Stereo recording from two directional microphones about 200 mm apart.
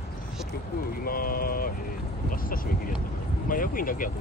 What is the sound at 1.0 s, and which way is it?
Speech, 45° left (ahead or behind).